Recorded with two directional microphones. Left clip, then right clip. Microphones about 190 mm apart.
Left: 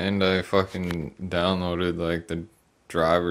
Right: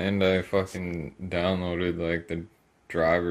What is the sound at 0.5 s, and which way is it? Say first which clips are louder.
Speech: left 3 dB; 25° left (ahead or behind).